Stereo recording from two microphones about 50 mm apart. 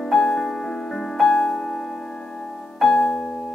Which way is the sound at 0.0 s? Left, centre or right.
Centre.